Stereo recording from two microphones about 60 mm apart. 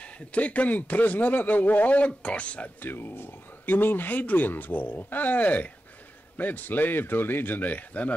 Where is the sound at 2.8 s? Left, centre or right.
Left.